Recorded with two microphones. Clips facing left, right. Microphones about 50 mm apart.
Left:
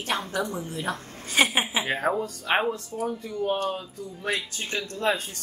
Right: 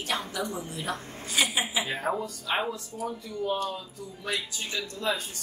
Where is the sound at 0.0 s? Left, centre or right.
Left.